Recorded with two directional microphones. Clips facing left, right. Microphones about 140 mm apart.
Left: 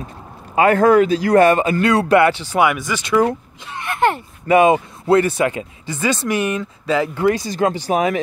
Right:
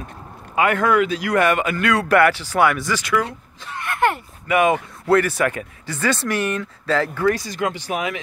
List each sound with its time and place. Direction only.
0.6 s speech: 35° left (ahead or behind); by 7.2 s 15° left (ahead or behind)
7.2 s speech: 25° left (ahead or behind)